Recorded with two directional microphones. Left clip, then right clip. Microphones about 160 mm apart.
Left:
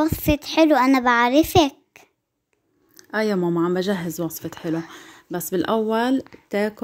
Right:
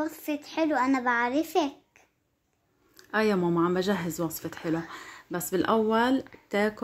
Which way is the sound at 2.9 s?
30° left (ahead or behind).